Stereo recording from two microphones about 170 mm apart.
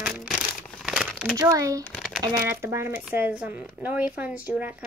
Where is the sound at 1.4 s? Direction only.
20° right (ahead or behind).